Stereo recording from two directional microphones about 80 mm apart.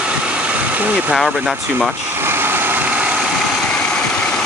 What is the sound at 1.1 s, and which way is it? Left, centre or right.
Speech, centre.